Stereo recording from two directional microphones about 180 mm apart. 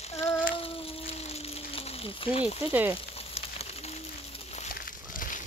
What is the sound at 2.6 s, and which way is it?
Frying, 10° right (ahead or behind).